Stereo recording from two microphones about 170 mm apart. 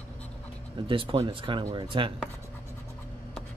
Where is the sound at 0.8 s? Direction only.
30° right (ahead or behind).